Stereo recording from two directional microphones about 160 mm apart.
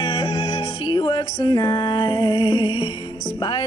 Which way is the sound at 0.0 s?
30° left (ahead or behind).